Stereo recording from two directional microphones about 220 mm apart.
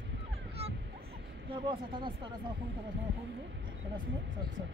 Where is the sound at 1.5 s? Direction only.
20° right (ahead or behind).